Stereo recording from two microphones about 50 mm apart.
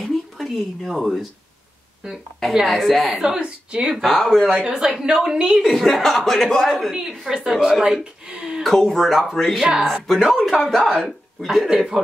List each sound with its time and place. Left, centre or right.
0.0 s a sound: centre
2.5 s speech: centre
3.3 s a woman's voice: right
4.0 s speech: centre
4.6 s a woman's voice: centre
5.6 s speech: centre
6.7 s a woman's voice: centre
7.8 s a woman's voice: centre
8.6 s speech: centre
11.4 s a woman's voice: centre